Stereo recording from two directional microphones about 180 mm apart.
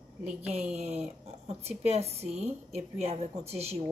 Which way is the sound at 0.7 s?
35° right (ahead or behind).